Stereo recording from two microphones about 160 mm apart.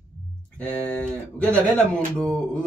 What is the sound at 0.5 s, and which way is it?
A man's voice, 10° left (ahead or behind).